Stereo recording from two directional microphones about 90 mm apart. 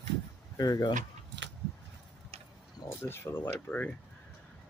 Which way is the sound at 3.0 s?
25° left (ahead or behind).